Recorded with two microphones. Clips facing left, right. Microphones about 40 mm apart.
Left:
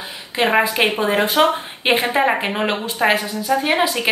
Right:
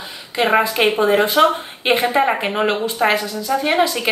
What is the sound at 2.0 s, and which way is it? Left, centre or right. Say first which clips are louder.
Speech: right 2 dB; left.